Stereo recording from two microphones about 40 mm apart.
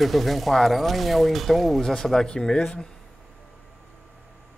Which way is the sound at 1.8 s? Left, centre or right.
Centre.